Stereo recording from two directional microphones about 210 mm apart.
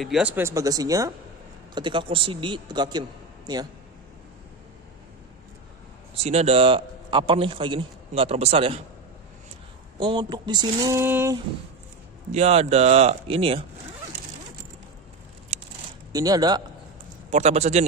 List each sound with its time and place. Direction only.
0.0 s a man's voice: 5° right (ahead or behind)
6.1 s a man's voice: 30° right (ahead or behind)
9.9 s a man's voice: 20° right (ahead or behind)
12.3 s speech: 30° right (ahead or behind)
15.5 s a sound: 30° right (ahead or behind)
16.1 s a man's voice: 15° right (ahead or behind)
17.3 s speech: 30° right (ahead or behind)